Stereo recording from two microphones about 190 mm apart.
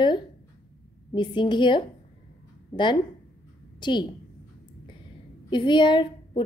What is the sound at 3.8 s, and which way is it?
Speech, 25° left (ahead or behind).